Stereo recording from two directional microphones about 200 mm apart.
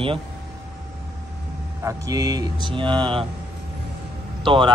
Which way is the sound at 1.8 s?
20° right (ahead or behind).